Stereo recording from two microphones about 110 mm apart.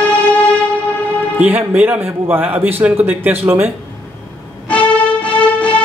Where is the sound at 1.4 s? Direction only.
15° right (ahead or behind).